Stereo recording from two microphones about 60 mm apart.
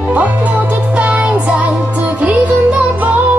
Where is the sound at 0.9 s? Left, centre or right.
Right.